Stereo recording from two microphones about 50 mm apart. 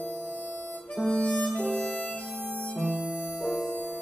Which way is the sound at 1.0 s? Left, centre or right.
Centre.